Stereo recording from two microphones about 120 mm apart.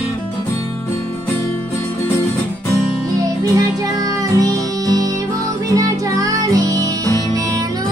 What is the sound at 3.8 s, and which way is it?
Music, 30° right (ahead or behind).